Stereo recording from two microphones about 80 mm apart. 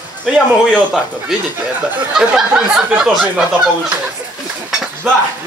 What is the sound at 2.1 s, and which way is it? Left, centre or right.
Speech, centre.